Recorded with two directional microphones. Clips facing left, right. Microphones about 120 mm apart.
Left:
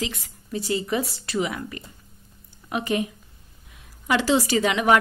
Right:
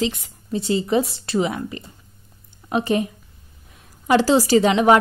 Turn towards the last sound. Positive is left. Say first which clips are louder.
# right 6 dB
turn(degrees=-30)  # may be behind; listen again after turning